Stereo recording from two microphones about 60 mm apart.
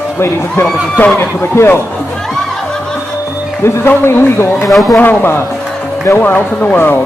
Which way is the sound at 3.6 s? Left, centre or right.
Left.